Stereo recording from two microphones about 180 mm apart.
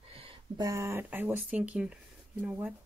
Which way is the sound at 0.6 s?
15° right (ahead or behind).